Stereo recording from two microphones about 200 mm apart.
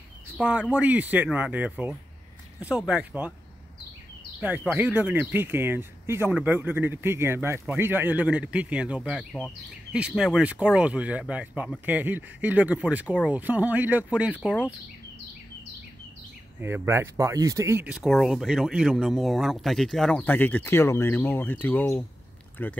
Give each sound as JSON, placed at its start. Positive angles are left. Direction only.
{"t": 0.4, "sound": "speech", "side_deg": -5}
{"t": 4.4, "sound": "speech", "side_deg": -5}
{"t": 16.6, "sound": "speech", "side_deg": -10}